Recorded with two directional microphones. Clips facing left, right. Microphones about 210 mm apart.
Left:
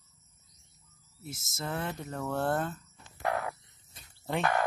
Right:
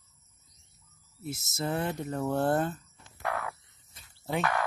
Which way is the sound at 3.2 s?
35° left (ahead or behind).